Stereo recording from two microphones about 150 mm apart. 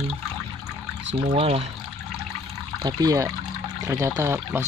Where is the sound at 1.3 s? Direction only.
45° right (ahead or behind).